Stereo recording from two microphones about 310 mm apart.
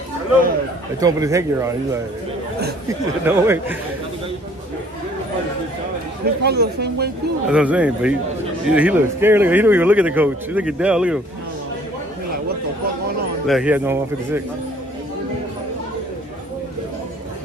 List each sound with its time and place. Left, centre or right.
0.9 s speech: centre
3.3 s speech: centre
6.2 s speech: right
7.4 s a man's voice: centre
13.5 s a man's voice: centre